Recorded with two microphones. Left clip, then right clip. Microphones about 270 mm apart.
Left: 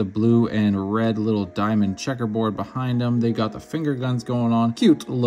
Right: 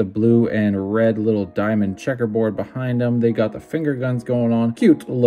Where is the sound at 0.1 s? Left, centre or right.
Centre.